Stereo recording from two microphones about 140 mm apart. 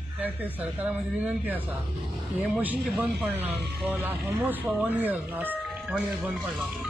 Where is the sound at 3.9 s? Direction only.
15° right (ahead or behind).